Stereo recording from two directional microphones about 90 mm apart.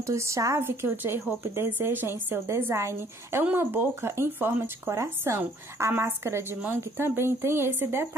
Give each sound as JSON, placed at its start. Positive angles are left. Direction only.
{"t": 0.0, "sound": "a woman's voice", "side_deg": -35}
{"t": 0.7, "sound": "a woman's voice", "side_deg": -25}